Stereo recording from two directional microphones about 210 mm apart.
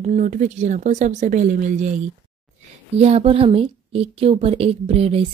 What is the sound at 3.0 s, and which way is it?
A woman's voice, 30° right (ahead or behind).